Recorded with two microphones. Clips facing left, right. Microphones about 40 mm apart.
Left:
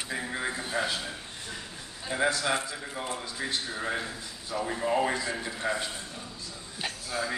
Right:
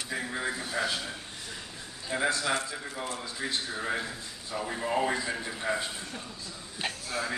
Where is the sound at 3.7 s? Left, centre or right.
Centre.